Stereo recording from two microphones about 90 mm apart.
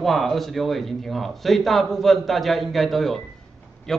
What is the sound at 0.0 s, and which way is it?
Speech, centre (ahead or behind).